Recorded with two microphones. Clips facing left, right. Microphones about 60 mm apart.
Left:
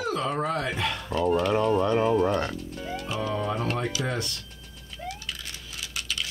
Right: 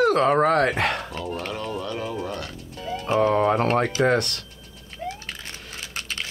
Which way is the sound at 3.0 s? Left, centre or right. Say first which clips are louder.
Right 11 dB; right.